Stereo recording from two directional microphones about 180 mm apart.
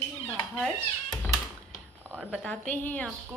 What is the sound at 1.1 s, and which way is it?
Cat, 20° left (ahead or behind).